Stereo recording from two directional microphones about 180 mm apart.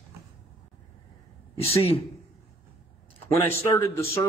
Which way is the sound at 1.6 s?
35° left (ahead or behind).